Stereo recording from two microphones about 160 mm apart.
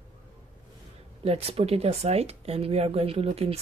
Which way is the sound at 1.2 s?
40° right (ahead or behind).